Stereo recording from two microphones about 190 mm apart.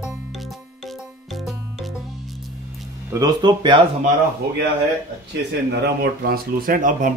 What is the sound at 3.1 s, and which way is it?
Speech, 20° right (ahead or behind).